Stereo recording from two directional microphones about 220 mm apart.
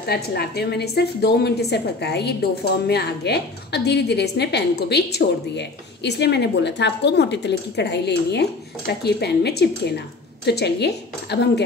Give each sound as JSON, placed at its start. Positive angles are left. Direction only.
{"t": 0.0, "sound": "a woman's voice", "side_deg": 45}